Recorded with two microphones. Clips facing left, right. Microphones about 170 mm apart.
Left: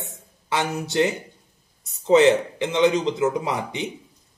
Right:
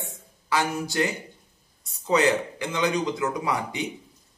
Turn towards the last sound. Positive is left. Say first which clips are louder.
# left 1 dB
turn(degrees=20)  # may be behind; listen again after turning